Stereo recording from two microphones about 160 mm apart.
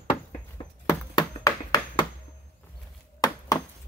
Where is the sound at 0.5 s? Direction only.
20° left (ahead or behind).